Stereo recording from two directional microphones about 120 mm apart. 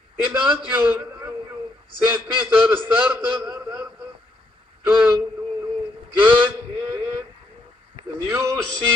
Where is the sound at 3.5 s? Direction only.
30° right (ahead or behind).